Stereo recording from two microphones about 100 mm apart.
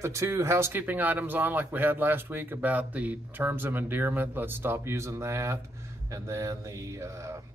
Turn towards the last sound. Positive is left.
turn(degrees=-30)  # may be behind; listen again after turning